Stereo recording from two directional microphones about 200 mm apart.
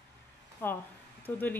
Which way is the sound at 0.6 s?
10° left (ahead or behind).